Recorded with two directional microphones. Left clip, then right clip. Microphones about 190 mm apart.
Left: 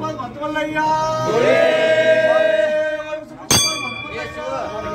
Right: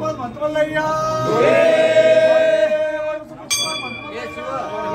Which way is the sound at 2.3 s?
30° right (ahead or behind).